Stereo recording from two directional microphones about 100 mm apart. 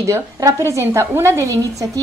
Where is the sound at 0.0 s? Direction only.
35° right (ahead or behind).